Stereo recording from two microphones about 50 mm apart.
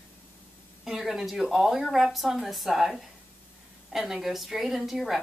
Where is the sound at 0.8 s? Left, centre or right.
Centre.